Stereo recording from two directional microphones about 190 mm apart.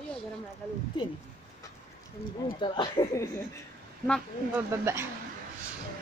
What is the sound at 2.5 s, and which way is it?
Speech, 25° left (ahead or behind).